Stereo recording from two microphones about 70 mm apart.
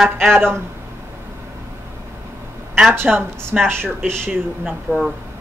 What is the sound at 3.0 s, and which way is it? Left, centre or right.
A woman's voice, right.